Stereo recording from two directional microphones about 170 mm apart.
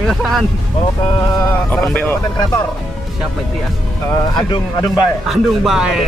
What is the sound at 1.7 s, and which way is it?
Speech, 10° left (ahead or behind).